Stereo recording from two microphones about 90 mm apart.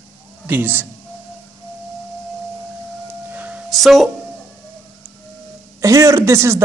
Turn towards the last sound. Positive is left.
turn(degrees=-30)  # may be behind; listen again after turning